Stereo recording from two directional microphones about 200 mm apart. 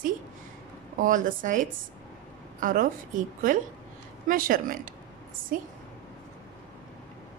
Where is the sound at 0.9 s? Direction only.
40° right (ahead or behind).